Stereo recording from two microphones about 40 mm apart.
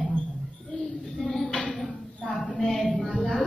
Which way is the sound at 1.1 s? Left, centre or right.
Centre.